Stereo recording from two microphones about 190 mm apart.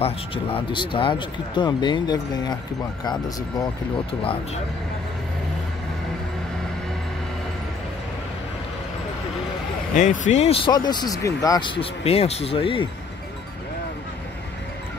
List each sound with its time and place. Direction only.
0.0 s speech: 30° left (ahead or behind)
9.9 s speech: 40° left (ahead or behind)